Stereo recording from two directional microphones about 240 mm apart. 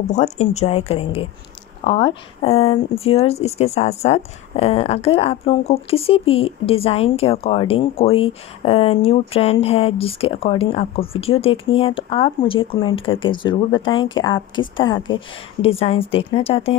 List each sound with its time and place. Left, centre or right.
0.1 s speech: left